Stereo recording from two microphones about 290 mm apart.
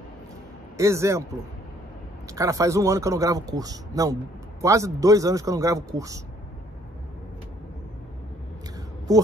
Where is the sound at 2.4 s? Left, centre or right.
Centre.